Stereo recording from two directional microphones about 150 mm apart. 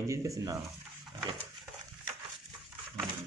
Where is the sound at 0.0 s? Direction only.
20° right (ahead or behind).